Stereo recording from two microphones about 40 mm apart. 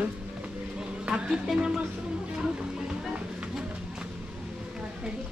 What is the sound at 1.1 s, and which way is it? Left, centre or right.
Speech, centre.